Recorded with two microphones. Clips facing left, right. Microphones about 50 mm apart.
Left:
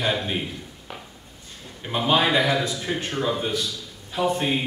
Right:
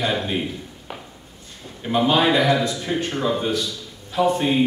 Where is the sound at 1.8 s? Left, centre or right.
Centre.